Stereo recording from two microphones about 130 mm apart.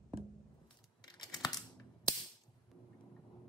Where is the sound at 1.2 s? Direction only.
30° left (ahead or behind).